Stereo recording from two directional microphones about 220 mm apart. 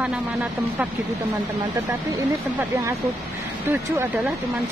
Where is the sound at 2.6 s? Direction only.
15° right (ahead or behind).